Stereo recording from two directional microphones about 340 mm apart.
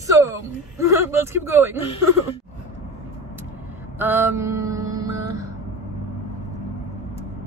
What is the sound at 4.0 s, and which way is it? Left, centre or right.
Mantra, centre.